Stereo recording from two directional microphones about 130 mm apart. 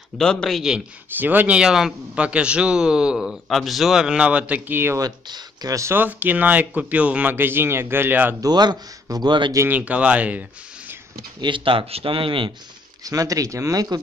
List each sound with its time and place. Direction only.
0.2 s a man's voice: 5° left (ahead or behind); by 5.0 s 15° right (ahead or behind)
5.0 s a man's voice: 30° right (ahead or behind)
8.4 s speech: 30° right (ahead or behind)
9.6 s a man's voice: 10° right (ahead or behind)
11.4 s speech: 40° right (ahead or behind)
13.0 s speech: 25° right (ahead or behind)